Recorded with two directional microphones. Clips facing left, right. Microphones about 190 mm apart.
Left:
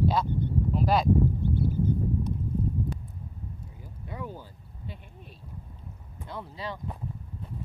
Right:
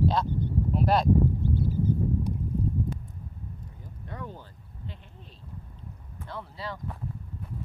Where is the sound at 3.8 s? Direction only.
10° left (ahead or behind).